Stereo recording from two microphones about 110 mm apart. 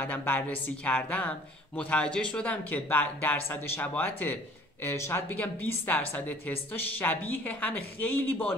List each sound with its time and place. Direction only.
0.0 s a woman's voice: 15° left (ahead or behind)